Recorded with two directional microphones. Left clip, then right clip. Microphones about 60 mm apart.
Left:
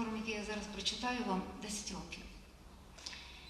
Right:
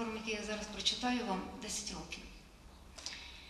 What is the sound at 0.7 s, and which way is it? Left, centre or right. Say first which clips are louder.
Speech: right 3 dB; right.